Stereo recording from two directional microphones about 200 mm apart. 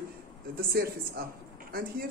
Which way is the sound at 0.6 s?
45° right (ahead or behind).